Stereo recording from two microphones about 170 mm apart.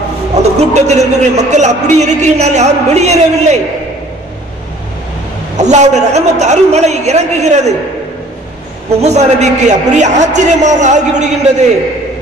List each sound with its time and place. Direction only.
0.4 s a man's voice: 40° right (ahead or behind)
5.6 s a man's voice: 45° right (ahead or behind)
9.0 s a man's voice: 40° right (ahead or behind)